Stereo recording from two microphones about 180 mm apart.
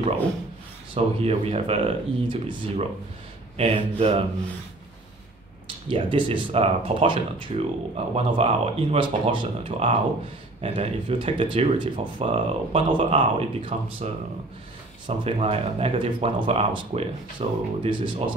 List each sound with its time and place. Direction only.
0.9 s speech: 35° right (ahead or behind)
5.9 s speech: 30° right (ahead or behind)